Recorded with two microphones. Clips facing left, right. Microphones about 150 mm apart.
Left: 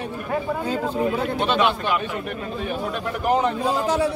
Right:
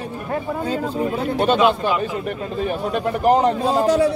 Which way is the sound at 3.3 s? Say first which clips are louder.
Right 4 dB; 35° right (ahead or behind).